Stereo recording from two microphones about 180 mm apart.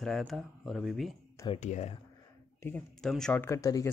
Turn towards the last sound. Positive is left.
turn(degrees=20)  # may be behind; listen again after turning